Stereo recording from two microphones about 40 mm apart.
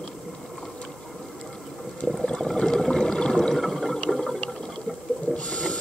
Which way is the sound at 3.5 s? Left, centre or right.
Centre.